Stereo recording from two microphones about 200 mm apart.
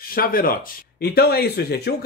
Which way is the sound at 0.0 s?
45° left (ahead or behind).